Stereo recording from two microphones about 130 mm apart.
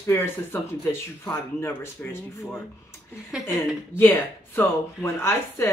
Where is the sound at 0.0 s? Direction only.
20° left (ahead or behind).